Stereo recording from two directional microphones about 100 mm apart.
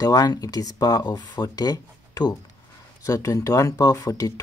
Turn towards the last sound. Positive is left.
turn(degrees=35)  # may be behind; listen again after turning